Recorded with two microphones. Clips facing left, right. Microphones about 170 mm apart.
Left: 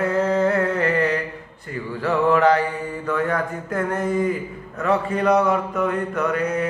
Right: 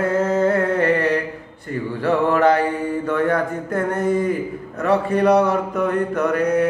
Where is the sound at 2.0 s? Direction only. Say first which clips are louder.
Right 1 dB; 30° right (ahead or behind).